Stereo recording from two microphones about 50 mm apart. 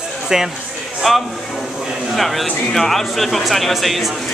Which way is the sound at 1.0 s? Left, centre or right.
Centre.